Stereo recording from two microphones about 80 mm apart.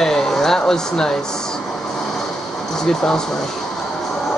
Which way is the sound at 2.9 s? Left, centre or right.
Centre.